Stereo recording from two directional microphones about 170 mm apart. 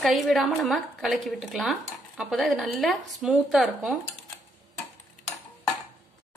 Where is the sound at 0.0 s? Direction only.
Centre (ahead or behind).